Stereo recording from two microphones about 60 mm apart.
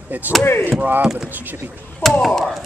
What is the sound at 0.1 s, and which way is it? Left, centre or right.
Speech, right.